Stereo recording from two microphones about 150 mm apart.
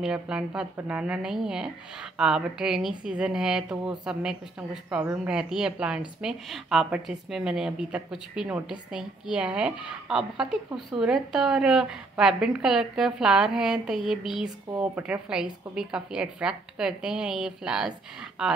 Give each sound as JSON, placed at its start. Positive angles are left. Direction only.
{"t": 0.0, "sound": "a woman's voice", "side_deg": -5}